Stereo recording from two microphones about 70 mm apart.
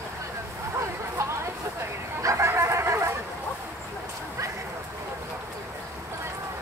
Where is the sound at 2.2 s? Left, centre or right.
Right.